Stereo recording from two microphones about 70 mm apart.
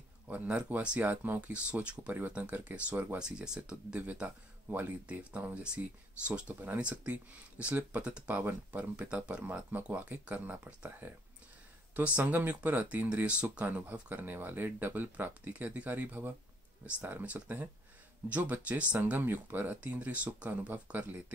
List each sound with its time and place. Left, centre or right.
0.3 s speech: right
4.0 s speech: right
11.9 s speech: centre